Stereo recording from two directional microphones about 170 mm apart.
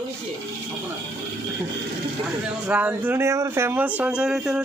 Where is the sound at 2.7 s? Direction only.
10° right (ahead or behind).